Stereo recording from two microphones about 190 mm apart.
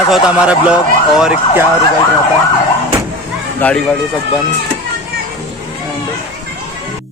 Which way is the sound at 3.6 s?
10° left (ahead or behind).